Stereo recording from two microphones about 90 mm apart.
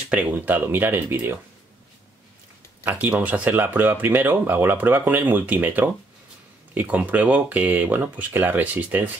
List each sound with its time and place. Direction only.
0.1 s speech: 20° right (ahead or behind)
2.8 s speech: 20° right (ahead or behind)